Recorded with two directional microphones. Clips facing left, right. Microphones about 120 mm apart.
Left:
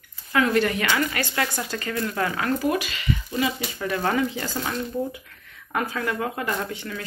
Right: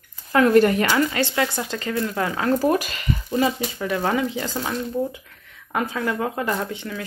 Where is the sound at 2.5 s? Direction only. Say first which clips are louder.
Right 4 dB; 40° right (ahead or behind).